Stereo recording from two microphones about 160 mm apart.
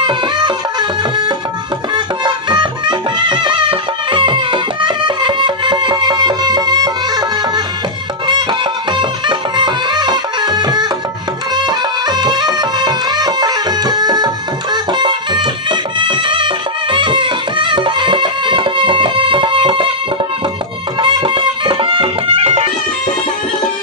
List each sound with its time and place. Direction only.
0.0 s music: 30° right (ahead or behind)
8.9 s music: 30° right (ahead or behind)
21.0 s music: 30° right (ahead or behind)